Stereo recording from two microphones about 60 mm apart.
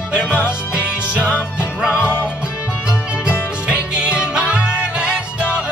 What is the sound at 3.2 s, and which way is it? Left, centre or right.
Music, centre.